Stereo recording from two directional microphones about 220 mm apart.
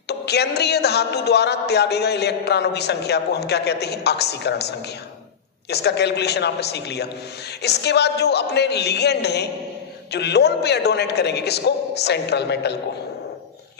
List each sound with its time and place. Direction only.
0.2 s speech: 50° left (ahead or behind)